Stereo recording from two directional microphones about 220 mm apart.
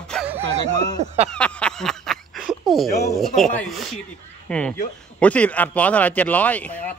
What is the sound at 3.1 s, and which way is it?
Speech, centre (ahead or behind).